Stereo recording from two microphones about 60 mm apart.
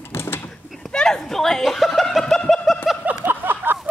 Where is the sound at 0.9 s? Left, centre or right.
Centre.